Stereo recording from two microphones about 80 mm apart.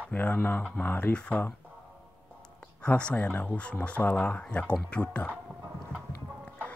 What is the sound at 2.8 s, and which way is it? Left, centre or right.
Speech, centre.